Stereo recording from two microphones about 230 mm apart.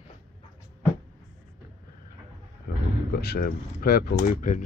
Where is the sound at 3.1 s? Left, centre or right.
Left.